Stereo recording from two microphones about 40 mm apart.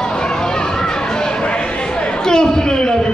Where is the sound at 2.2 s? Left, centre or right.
Centre.